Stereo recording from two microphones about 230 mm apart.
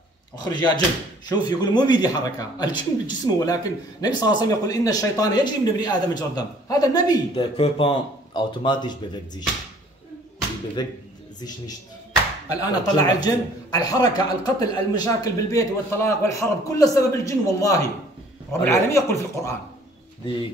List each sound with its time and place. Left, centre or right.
0.4 s a man's voice: centre
10.8 s a man's voice: centre
12.4 s a man's voice: centre